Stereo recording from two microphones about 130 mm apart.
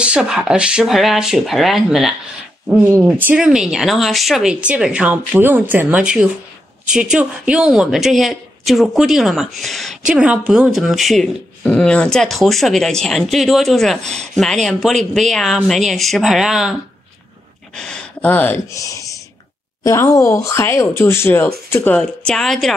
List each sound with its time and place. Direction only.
0.0 s speech: 5° right (ahead or behind)
2.8 s speech: 15° right (ahead or behind); by 16.7 s centre (ahead or behind)
17.7 s speech: 5° left (ahead or behind)
18.7 s speech: 25° left (ahead or behind); by 22.8 s centre (ahead or behind)